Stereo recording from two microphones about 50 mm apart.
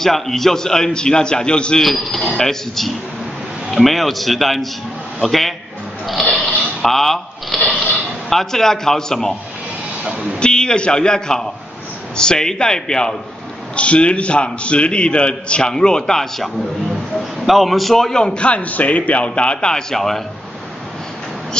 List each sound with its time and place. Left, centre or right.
0.0 s a man's voice: centre
1.8 s speech: centre
6.4 s a sound: centre
8.3 s a man's voice: centre
10.0 s a sound: centre
10.4 s a man's voice: centre
17.5 s a man's voice: centre